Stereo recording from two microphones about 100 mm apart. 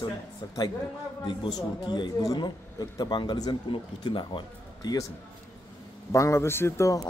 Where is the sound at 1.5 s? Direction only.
45° left (ahead or behind).